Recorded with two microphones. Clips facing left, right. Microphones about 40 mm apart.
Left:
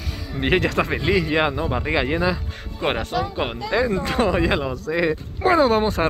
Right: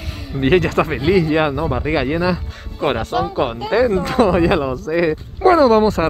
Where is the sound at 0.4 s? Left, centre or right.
Centre.